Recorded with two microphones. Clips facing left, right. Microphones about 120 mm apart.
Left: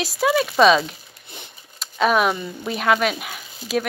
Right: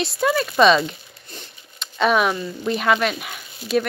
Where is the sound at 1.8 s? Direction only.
Centre (ahead or behind).